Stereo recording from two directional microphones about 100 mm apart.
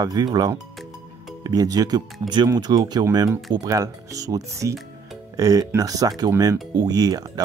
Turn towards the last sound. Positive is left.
turn(degrees=-40)  # may be behind; listen again after turning